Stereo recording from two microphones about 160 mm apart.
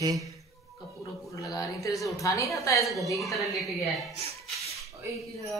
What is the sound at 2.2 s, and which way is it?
Speech, 20° left (ahead or behind).